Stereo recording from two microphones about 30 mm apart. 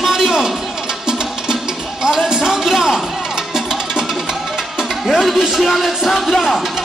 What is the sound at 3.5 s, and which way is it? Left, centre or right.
Music, centre.